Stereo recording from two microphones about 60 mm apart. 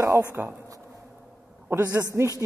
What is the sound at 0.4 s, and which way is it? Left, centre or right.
Speech, right.